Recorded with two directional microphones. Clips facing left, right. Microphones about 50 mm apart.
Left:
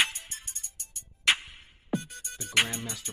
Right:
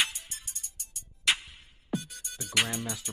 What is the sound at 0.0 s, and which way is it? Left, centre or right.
Music, left.